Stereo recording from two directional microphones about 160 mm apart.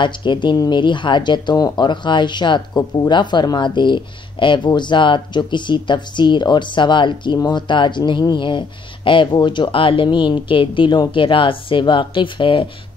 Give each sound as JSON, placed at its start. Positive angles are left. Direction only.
{"t": 0.0, "sound": "speech", "side_deg": 30}